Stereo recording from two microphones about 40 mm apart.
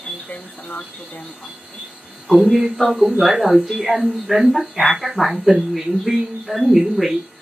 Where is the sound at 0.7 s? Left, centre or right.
Left.